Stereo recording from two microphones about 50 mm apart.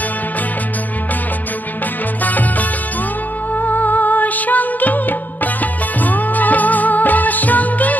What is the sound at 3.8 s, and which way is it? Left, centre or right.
Music, left.